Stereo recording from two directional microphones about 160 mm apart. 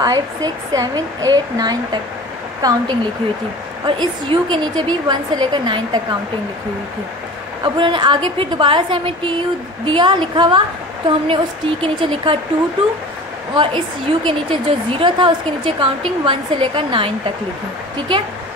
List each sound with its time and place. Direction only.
0.0 s speech: 25° right (ahead or behind)
3.8 s speech: 30° right (ahead or behind)
7.6 s a woman's voice: 30° right (ahead or behind)
13.6 s a woman's voice: 30° right (ahead or behind)